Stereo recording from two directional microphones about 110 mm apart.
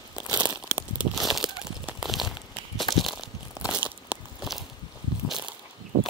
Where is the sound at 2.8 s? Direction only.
Centre (ahead or behind).